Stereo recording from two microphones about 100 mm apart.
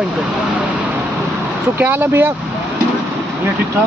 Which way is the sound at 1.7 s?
20° right (ahead or behind).